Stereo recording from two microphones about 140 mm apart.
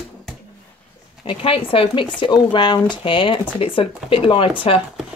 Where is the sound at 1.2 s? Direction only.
40° left (ahead or behind).